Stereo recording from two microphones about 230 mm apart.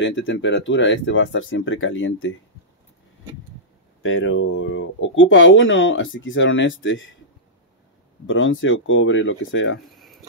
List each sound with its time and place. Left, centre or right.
0.0 s speech: left
4.0 s speech: left
8.3 s speech: left
9.9 s a sound: centre